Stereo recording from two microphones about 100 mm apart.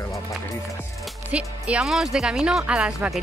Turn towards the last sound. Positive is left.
turn(degrees=-10)  # may be behind; listen again after turning